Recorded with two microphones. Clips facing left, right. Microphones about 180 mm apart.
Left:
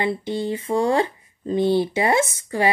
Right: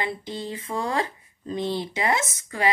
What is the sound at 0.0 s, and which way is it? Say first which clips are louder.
Speech: left 7 dB; 30° left (ahead or behind).